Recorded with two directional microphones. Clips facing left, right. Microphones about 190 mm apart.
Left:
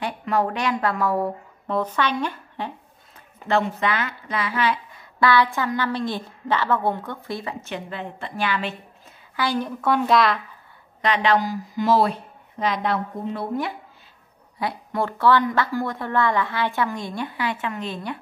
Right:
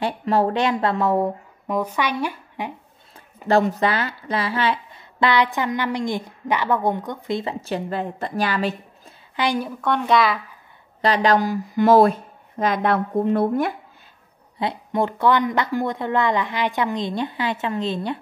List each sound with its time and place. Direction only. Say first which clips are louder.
0.0 s speech: right 3 dB; 30° right (ahead or behind)
1.7 s a woman's voice: even; 10° right (ahead or behind)
3.4 s speech: right 4 dB; 40° right (ahead or behind); by 7.5 s 20° right (ahead or behind)
7.6 s a woman's voice: right 6 dB; 35° right (ahead or behind)
9.4 s a woman's voice: right 2 dB; 15° right (ahead or behind)
9.7 s a woman's voice: even; 5° left (ahead or behind)
11.0 s a woman's voice: right 2 dB; 40° right (ahead or behind)
14.6 s speech: right 3 dB; 20° right (ahead or behind)